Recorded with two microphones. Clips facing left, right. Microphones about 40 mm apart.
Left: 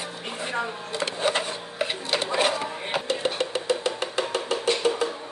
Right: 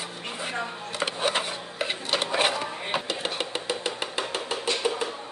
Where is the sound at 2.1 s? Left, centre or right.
Right.